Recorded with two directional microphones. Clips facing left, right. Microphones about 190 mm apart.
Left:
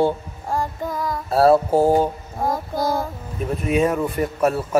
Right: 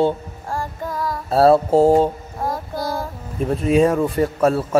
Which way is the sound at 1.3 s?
30° right (ahead or behind).